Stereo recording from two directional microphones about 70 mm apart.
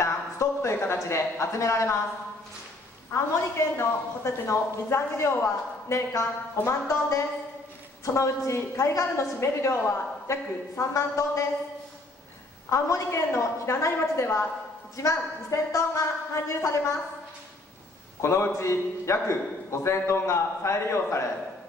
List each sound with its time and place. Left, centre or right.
0.0 s a sound: left
1.0 s a man's voice: left
3.7 s a man's voice: left
12.6 s a man's voice: left
18.2 s a man's voice: left